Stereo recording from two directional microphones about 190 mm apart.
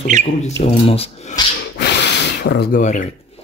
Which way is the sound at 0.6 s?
35° left (ahead or behind).